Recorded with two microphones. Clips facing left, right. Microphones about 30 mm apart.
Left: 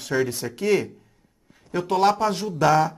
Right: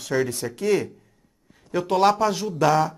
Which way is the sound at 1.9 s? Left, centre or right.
Centre.